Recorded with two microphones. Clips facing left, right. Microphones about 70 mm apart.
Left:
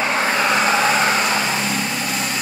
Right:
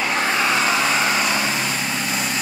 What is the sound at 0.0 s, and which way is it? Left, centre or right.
Vehicle, left.